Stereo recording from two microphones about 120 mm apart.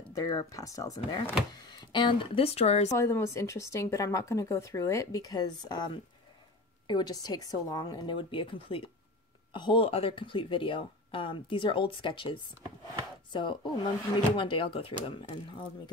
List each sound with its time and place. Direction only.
0.1 s a woman's voice: 35° left (ahead or behind); by 2.9 s 60° left (ahead or behind)
2.9 s a woman's voice: 25° left (ahead or behind); by 15.6 s 45° left (ahead or behind)